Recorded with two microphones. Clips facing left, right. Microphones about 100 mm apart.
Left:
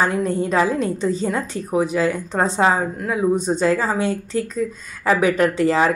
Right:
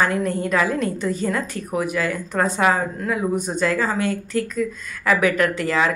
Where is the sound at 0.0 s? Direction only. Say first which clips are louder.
Left 1 dB; 20° left (ahead or behind).